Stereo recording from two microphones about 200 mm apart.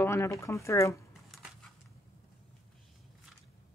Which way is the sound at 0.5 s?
15° left (ahead or behind).